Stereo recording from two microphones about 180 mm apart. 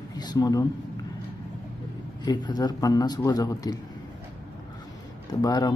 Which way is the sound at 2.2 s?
20° left (ahead or behind).